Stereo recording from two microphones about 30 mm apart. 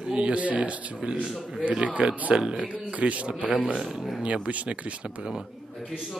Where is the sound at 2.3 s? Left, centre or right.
Right.